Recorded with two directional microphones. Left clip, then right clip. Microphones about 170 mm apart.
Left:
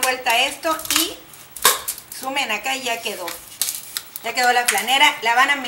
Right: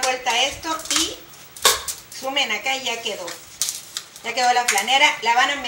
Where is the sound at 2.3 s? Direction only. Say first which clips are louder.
Right 1 dB; 15° left (ahead or behind).